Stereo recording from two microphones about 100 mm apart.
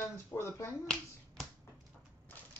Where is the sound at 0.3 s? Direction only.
25° left (ahead or behind).